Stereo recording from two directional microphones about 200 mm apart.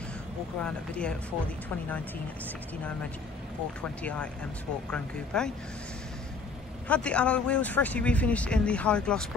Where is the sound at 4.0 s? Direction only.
5° left (ahead or behind).